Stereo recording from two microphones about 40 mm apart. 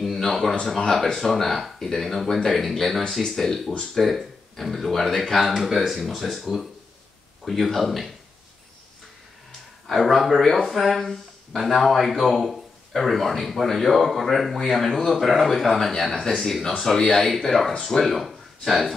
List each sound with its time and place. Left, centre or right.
0.3 s speech: centre
9.8 s speech: centre
15.9 s speech: centre